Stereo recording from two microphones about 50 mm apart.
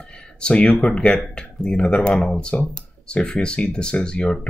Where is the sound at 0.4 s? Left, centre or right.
Left.